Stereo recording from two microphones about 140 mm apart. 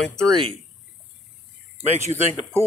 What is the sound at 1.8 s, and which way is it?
Speech, 50° right (ahead or behind).